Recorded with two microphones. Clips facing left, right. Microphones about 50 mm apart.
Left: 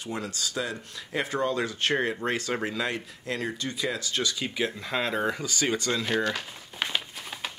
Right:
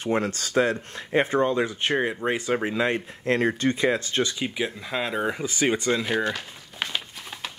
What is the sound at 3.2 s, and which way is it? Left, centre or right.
Speech, right.